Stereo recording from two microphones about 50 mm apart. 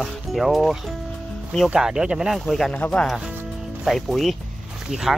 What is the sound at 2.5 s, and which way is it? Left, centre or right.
Speech, centre.